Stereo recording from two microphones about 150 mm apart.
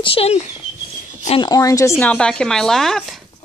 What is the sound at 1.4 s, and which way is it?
Speech, 25° left (ahead or behind).